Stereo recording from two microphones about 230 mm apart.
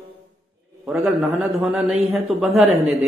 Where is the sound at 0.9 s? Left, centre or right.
Centre.